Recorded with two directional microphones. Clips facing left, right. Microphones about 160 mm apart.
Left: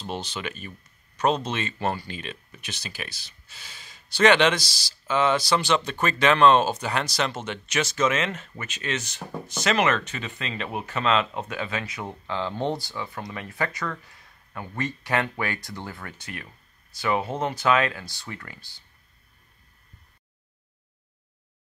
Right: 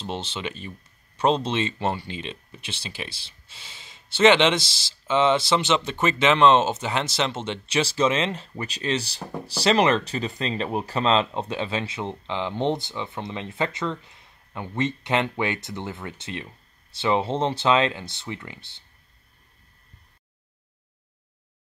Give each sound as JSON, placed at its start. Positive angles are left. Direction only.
{"t": 0.0, "sound": "speech", "side_deg": -25}